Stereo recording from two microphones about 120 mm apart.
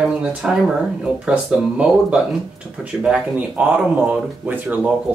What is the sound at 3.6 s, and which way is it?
Speech, 10° right (ahead or behind).